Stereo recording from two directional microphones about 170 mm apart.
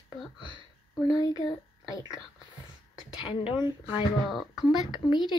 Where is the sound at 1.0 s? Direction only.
25° left (ahead or behind).